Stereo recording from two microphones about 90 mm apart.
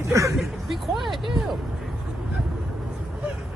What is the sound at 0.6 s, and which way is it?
Speech, centre (ahead or behind).